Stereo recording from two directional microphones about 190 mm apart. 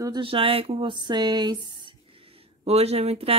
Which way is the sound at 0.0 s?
25° right (ahead or behind).